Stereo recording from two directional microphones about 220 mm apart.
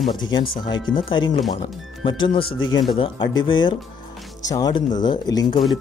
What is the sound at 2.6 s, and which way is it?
Speech, 60° left (ahead or behind).